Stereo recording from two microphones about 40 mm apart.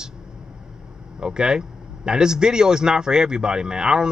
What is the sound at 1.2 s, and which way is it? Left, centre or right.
Speech, centre.